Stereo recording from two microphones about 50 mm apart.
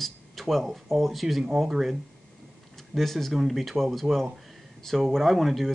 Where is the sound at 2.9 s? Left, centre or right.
Centre.